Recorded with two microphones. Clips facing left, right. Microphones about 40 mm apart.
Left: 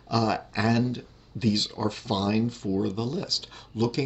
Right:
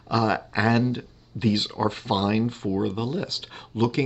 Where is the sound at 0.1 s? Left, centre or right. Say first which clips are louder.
Right 3 dB; right.